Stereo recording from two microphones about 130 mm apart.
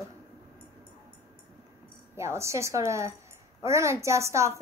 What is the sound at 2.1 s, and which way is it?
A woman's voice, 20° right (ahead or behind).